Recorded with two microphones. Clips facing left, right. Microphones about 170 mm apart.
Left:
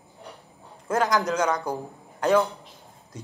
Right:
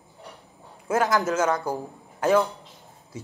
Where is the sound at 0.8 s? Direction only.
5° right (ahead or behind).